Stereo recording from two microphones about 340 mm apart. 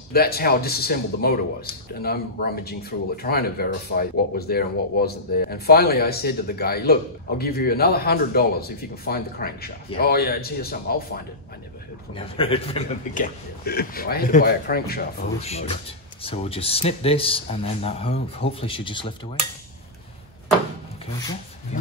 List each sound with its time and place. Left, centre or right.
0.1 s speech: left
12.1 s a man's voice: centre